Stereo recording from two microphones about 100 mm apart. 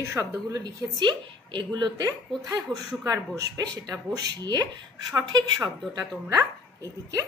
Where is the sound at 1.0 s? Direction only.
50° right (ahead or behind); by 7.2 s 30° right (ahead or behind).